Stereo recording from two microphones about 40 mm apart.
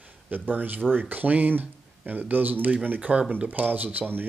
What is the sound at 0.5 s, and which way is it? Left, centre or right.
Speech, right.